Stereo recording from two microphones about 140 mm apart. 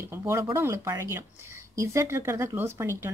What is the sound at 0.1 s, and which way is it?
Speech, 20° right (ahead or behind).